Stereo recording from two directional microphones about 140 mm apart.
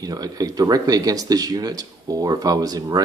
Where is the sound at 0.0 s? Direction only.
30° right (ahead or behind).